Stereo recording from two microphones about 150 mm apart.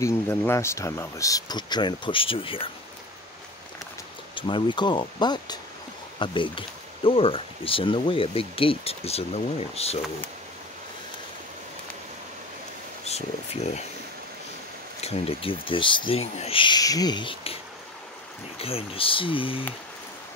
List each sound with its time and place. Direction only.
0.0 s speech: 20° left (ahead or behind); by 2.7 s 35° left (ahead or behind)
4.4 s speech: 35° left (ahead or behind)
13.0 s speech: 45° left (ahead or behind)
15.0 s speech: 40° left (ahead or behind)
18.6 s speech: 40° left (ahead or behind)